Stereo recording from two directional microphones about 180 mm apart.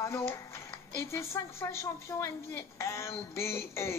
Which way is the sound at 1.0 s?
15° left (ahead or behind).